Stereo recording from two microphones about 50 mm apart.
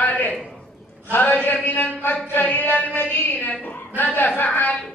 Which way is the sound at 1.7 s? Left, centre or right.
Left.